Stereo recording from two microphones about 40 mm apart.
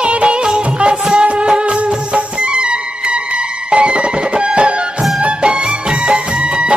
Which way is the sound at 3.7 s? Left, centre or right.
Right.